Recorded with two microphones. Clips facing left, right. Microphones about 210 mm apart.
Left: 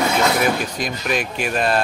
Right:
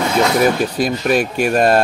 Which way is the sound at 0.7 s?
40° right (ahead or behind).